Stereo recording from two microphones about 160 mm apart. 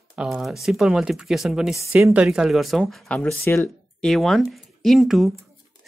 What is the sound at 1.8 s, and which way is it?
Speech, 15° right (ahead or behind).